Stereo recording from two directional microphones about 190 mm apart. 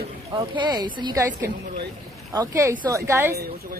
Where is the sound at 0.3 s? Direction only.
25° right (ahead or behind).